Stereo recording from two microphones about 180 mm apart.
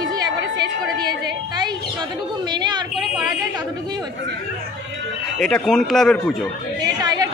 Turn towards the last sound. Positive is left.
turn(degrees=-20)  # may be behind; listen again after turning